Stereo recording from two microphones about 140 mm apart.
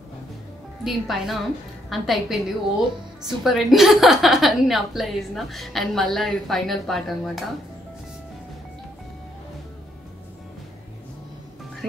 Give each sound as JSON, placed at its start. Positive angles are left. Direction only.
{"t": 0.8, "sound": "a woman's voice", "side_deg": 0}
{"t": 11.8, "sound": "music", "side_deg": 0}